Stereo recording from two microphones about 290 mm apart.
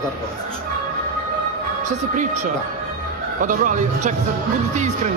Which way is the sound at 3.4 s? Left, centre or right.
Right.